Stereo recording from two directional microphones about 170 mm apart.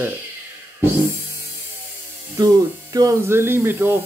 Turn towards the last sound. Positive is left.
turn(degrees=-15)  # may be behind; listen again after turning